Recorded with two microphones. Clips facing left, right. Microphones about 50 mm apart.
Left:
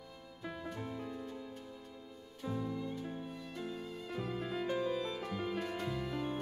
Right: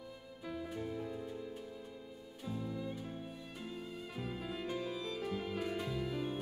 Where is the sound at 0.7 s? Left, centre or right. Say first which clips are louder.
Right 2 dB; centre.